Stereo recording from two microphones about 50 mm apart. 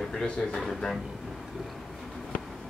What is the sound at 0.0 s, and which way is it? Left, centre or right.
Speech, centre.